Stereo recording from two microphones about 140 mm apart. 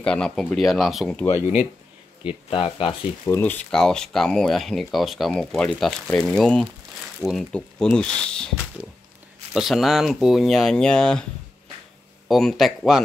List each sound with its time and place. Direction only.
0.0 s speech: 5° left (ahead or behind)
2.5 s speech: 40° left (ahead or behind)
3.3 s speech: 15° left (ahead or behind)
9.5 s speech: centre (ahead or behind)
12.3 s speech: centre (ahead or behind)